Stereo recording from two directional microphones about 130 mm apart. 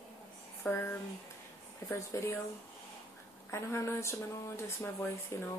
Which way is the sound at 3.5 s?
20° left (ahead or behind).